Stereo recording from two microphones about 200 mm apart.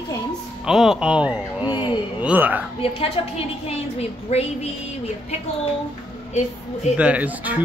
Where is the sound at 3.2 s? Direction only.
25° left (ahead or behind).